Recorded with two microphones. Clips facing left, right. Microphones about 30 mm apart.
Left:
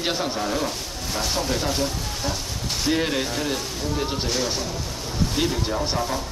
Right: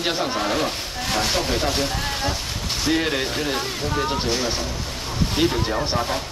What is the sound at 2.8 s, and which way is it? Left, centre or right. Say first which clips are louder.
Speech: right 1 dB; centre.